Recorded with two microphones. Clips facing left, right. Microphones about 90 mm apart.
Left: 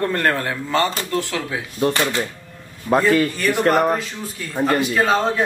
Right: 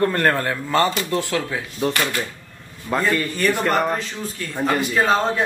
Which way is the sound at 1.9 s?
25° left (ahead or behind).